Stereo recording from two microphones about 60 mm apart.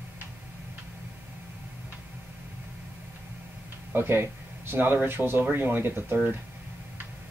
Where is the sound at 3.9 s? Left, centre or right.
Right.